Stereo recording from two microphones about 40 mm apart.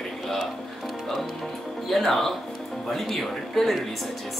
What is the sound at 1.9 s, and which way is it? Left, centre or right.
Speech, centre.